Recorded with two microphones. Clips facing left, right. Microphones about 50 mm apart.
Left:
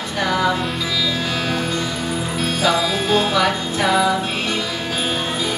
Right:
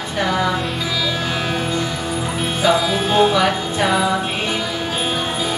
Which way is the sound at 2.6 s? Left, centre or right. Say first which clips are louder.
Right 3 dB; centre.